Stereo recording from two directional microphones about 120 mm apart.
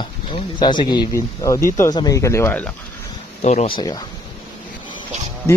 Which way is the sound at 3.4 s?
65° left (ahead or behind).